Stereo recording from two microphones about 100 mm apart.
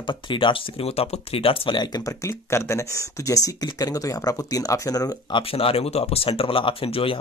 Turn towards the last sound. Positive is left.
turn(degrees=70)  # may be behind; listen again after turning